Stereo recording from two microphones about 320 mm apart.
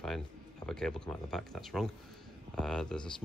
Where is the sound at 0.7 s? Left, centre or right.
Centre.